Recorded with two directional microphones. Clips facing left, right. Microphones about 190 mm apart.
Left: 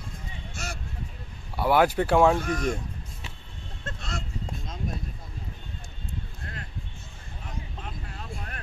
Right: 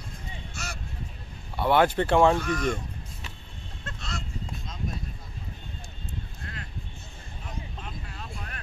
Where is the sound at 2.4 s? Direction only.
40° left (ahead or behind).